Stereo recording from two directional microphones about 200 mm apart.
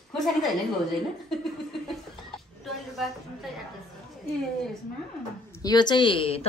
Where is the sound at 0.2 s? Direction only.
Centre (ahead or behind).